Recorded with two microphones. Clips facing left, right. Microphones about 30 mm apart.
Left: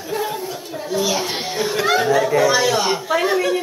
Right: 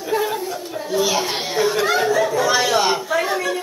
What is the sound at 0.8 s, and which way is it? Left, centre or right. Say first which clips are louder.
A child's voice: right 1 dB; centre.